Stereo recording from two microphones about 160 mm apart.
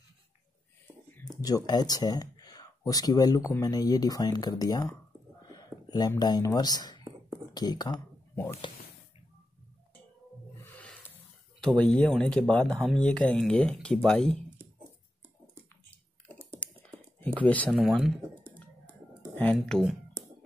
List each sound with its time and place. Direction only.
1.3 s a sound: 25° left (ahead or behind)
1.7 s speech: 25° left (ahead or behind)
10.6 s snake: 10° left (ahead or behind)
11.6 s speech: 5° left (ahead or behind)
16.6 s computer keyboard: 10° left (ahead or behind)
17.2 s speech: 10° left (ahead or behind)
17.7 s speech: centre (ahead or behind)
19.3 s speech: 5° left (ahead or behind)
20.2 s music: 20° right (ahead or behind)